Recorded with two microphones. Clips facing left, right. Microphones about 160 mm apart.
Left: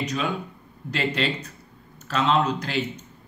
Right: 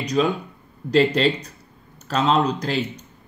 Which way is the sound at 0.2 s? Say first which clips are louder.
Right 7 dB; 35° right (ahead or behind).